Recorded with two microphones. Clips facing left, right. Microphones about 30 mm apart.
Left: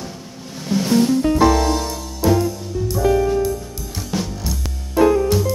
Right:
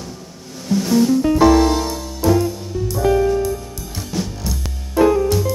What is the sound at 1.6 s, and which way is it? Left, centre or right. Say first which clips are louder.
Music: right 3 dB; centre.